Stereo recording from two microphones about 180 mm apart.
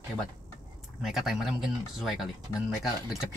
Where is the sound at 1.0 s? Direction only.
Centre (ahead or behind).